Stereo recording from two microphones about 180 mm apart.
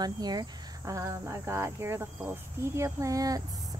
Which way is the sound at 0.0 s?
20° right (ahead or behind).